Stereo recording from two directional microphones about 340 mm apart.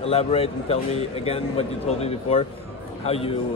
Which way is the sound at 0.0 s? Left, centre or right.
Centre.